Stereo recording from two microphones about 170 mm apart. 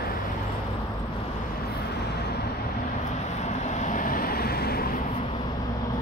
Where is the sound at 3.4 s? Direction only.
45° left (ahead or behind); by 5.0 s 65° left (ahead or behind).